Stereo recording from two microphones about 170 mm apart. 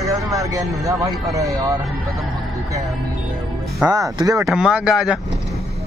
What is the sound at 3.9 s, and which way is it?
Speech, 20° right (ahead or behind).